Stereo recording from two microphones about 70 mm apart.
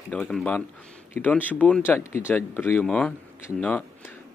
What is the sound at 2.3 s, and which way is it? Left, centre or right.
Speech, left.